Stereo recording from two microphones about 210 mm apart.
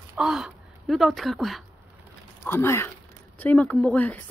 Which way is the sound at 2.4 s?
10° left (ahead or behind).